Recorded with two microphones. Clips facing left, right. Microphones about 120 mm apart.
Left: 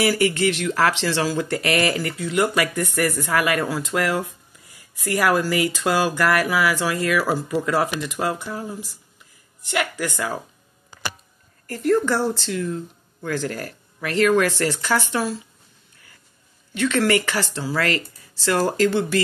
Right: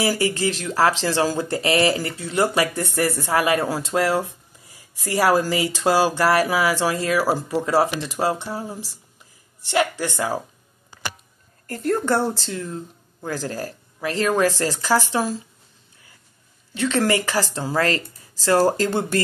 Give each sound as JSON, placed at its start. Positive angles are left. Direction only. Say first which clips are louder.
{"t": 0.1, "sound": "speech", "louder": "left 2 dB", "side_deg": -35}
{"t": 11.6, "sound": "a woman's voice", "louder": "left 3 dB", "side_deg": -35}
{"t": 13.7, "sound": "speech", "louder": "right 2 dB", "side_deg": -25}
{"t": 14.8, "sound": "speech", "louder": "right 2 dB", "side_deg": -15}
{"t": 17.3, "sound": "speech", "louder": "right 2 dB", "side_deg": -40}